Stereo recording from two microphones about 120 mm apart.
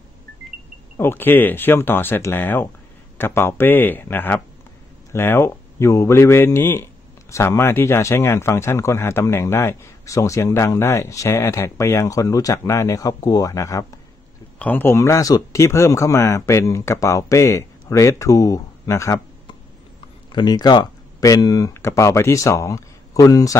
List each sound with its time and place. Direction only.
0.9 s speech: 20° left (ahead or behind)
14.6 s speech: 15° left (ahead or behind)
20.3 s speech: 35° left (ahead or behind)